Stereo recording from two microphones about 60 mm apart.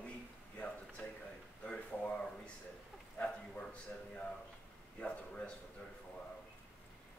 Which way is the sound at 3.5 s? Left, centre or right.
Left.